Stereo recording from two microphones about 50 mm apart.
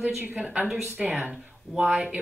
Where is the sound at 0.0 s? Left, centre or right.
Right.